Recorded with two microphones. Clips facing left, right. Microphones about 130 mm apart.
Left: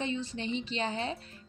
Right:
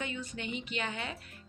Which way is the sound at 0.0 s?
30° left (ahead or behind).